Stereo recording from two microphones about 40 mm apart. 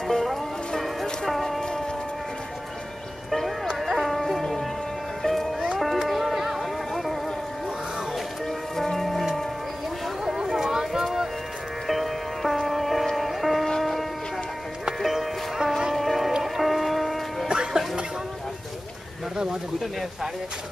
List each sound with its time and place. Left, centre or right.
0.1 s music: centre
1.2 s a sound: centre
1.6 s insect: centre
3.3 s a sound: centre
5.2 s music: centre
8.5 s music: centre
10.2 s a sound: centre
11.9 s music: centre
17.5 s music: centre
19.3 s bird: centre